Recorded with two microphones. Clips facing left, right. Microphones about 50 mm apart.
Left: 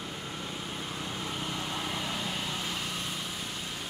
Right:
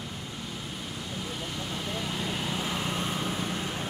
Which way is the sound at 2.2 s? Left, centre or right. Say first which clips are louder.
Right 3 dB; centre.